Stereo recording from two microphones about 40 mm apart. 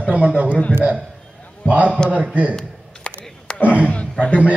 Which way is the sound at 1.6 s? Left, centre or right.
Right.